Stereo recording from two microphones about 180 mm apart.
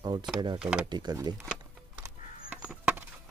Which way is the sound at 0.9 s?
25° right (ahead or behind).